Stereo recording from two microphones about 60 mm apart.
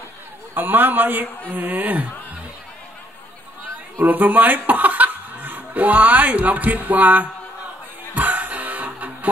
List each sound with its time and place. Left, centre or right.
0.6 s a man's voice: right
4.0 s speech: right
8.1 s music: right